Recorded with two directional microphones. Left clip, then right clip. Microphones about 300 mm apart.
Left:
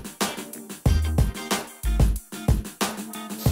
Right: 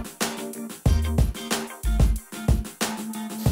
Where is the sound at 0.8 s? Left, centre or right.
Centre.